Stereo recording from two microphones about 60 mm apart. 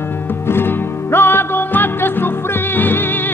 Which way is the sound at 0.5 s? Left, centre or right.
Left.